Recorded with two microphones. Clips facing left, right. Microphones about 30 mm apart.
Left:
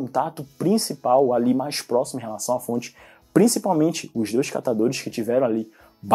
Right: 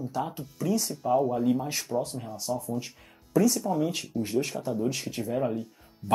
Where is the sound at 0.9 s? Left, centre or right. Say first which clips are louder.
Left 6 dB; centre.